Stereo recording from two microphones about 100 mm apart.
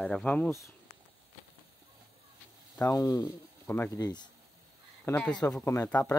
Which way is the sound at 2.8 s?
35° left (ahead or behind).